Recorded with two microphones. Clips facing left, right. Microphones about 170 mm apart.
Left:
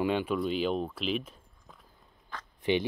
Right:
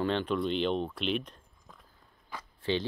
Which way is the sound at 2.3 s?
10° right (ahead or behind).